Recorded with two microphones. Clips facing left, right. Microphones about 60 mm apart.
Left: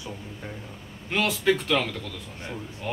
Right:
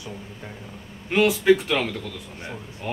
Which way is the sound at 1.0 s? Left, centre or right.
Centre.